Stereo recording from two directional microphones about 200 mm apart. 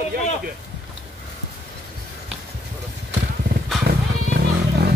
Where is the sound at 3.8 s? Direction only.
55° right (ahead or behind).